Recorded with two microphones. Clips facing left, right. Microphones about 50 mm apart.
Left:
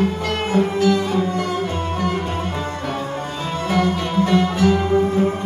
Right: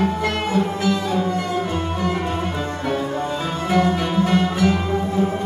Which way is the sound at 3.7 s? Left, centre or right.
Right.